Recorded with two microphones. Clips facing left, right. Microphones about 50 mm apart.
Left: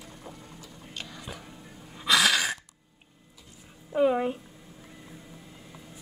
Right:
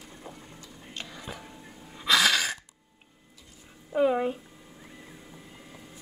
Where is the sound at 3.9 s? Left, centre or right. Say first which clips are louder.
Even; centre.